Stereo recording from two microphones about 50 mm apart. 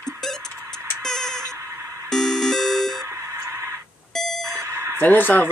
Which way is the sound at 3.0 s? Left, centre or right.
Right.